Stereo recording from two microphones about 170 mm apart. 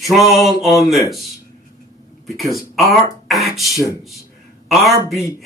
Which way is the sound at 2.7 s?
Centre (ahead or behind).